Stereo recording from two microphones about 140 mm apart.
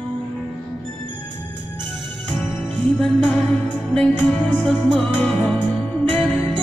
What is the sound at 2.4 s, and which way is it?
Music, 10° left (ahead or behind).